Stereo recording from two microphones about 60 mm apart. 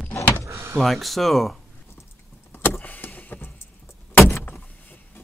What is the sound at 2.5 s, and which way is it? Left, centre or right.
Vehicle, left.